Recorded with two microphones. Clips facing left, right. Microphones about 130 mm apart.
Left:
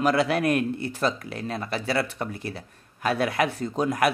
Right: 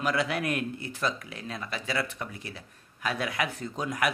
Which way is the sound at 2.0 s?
55° left (ahead or behind).